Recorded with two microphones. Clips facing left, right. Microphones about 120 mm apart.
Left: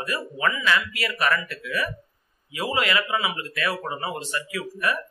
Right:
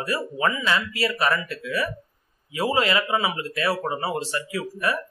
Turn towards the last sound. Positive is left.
turn(degrees=-30)  # may be behind; listen again after turning